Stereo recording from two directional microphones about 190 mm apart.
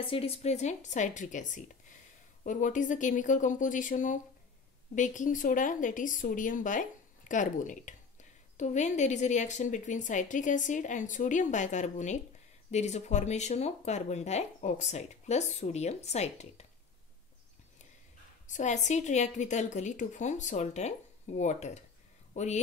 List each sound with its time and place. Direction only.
0.0 s speech: 30° left (ahead or behind)
18.5 s speech: 40° left (ahead or behind)